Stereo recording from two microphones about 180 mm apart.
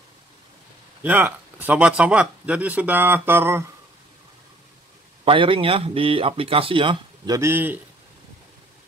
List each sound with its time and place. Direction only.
1.0 s speech: 10° right (ahead or behind)
5.2 s speech: 30° right (ahead or behind); by 7.8 s 10° right (ahead or behind)